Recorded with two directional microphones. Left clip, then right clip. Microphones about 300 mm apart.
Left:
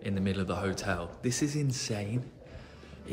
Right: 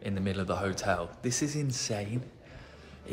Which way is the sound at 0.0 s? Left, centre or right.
Centre.